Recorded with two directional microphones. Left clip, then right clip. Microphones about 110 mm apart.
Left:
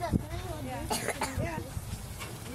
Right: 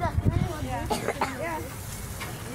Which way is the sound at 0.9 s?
90° right.